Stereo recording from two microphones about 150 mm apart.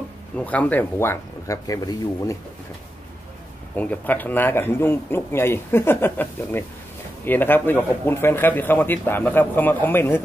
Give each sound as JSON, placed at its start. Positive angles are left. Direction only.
{"t": 0.4, "sound": "speech", "side_deg": 10}
{"t": 3.7, "sound": "speech", "side_deg": 10}